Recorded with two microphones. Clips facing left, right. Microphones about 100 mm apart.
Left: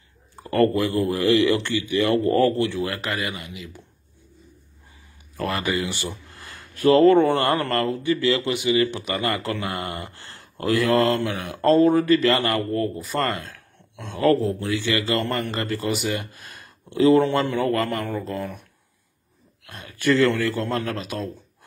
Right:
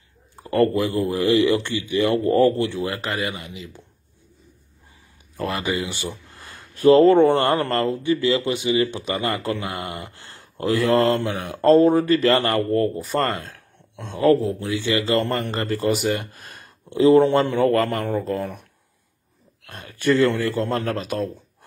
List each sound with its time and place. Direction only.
0.5 s speech: 15° right (ahead or behind)
5.4 s speech: 15° right (ahead or behind)
10.3 s a sound: 20° right (ahead or behind)
10.8 s speech: 35° right (ahead or behind)
14.2 s speech: 5° right (ahead or behind)
14.8 s speech: 20° right (ahead or behind)
15.0 s speech: 35° right (ahead or behind)
16.9 s speech: 25° right (ahead or behind); by 18.6 s 40° right (ahead or behind)
19.6 s speech: 40° right (ahead or behind)
20.2 s speech: 15° right (ahead or behind)
20.4 s speech: 35° right (ahead or behind)